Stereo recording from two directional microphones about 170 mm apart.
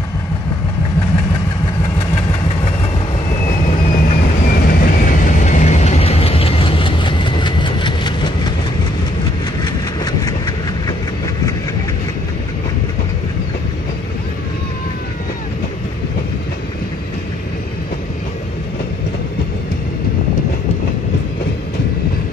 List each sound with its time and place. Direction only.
3.9 s vehicle: 60° left (ahead or behind); by 8.5 s 25° left (ahead or behind)
9.6 s rail transport: 25° left (ahead or behind)